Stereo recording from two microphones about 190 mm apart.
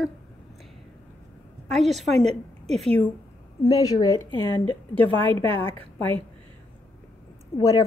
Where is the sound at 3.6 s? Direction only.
20° left (ahead or behind).